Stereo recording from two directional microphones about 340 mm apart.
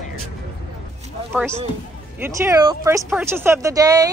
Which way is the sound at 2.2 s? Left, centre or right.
Centre.